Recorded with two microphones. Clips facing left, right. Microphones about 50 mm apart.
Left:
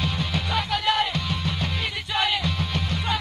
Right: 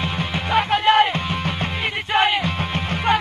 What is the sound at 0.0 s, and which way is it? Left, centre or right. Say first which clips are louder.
Music: right 3 dB; right.